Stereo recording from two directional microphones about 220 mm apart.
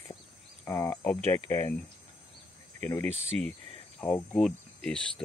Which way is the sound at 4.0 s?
5° left (ahead or behind).